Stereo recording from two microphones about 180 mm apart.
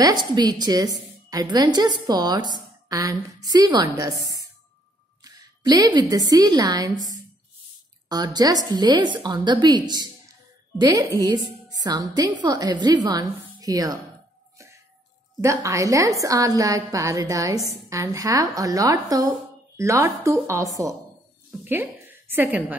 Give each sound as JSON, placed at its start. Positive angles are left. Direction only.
{"t": 0.0, "sound": "a woman's voice", "side_deg": -20}
{"t": 5.2, "sound": "a woman's voice", "side_deg": -20}
{"t": 8.1, "sound": "a woman's voice", "side_deg": -20}
{"t": 15.4, "sound": "a woman's voice", "side_deg": -15}